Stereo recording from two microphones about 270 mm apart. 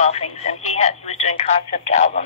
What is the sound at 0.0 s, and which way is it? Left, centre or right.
Speech, left.